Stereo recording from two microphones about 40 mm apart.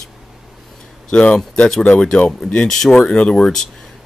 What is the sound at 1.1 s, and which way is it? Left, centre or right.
Speech, left.